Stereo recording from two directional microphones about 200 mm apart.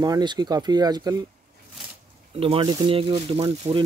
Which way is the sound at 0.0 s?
20° right (ahead or behind).